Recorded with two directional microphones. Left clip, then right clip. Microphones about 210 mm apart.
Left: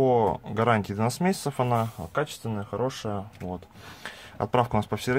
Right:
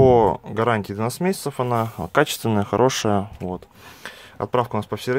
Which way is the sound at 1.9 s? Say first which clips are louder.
Right 10 dB; 35° right (ahead or behind).